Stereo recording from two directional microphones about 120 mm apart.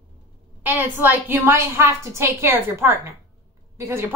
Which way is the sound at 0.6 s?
15° right (ahead or behind).